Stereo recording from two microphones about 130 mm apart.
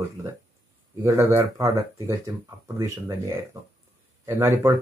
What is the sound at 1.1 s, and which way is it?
Speech, 25° right (ahead or behind).